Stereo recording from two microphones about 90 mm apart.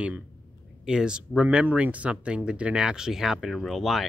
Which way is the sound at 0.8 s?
10° right (ahead or behind).